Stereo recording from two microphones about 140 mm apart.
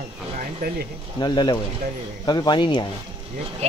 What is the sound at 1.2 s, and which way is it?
Speech, 30° left (ahead or behind).